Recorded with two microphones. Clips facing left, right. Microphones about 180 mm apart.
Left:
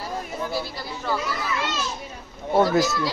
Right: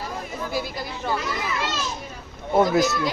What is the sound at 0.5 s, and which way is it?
Speech, 15° right (ahead or behind).